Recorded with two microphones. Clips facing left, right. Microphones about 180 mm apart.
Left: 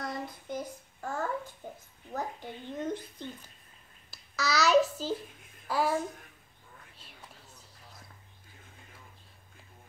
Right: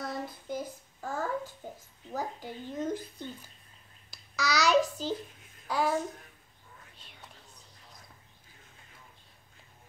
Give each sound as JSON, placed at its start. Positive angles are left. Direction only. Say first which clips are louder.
{"t": 0.0, "sound": "child singing", "louder": "right 1 dB", "side_deg": -5}
{"t": 2.1, "sound": "a child's voice", "louder": "right 1 dB", "side_deg": -5}